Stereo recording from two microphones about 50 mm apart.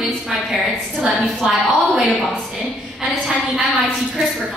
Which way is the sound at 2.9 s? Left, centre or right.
Centre.